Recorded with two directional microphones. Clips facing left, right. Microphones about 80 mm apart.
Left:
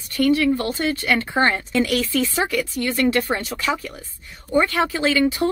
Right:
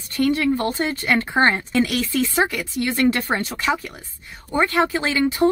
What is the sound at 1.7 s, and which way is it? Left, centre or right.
Speech, right.